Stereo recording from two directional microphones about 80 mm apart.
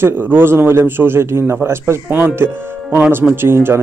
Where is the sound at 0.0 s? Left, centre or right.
Right.